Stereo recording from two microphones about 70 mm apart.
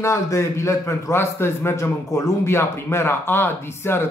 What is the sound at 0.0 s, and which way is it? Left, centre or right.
A man's voice, left.